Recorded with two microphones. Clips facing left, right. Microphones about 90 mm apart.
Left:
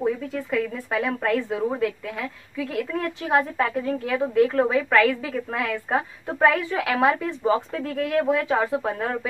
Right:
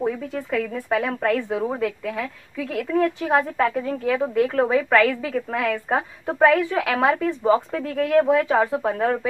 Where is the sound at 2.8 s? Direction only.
Centre (ahead or behind).